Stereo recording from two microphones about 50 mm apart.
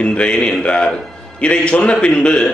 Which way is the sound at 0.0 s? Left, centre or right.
Left.